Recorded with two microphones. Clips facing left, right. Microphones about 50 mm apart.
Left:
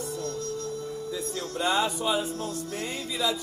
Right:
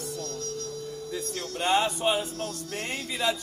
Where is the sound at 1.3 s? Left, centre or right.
Right.